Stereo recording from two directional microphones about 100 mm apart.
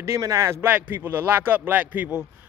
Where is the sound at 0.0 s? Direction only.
30° right (ahead or behind).